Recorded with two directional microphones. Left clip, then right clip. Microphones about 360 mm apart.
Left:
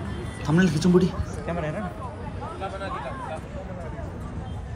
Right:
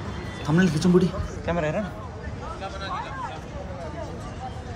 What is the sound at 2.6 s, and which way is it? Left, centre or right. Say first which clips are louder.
Vehicle: left 1 dB; centre.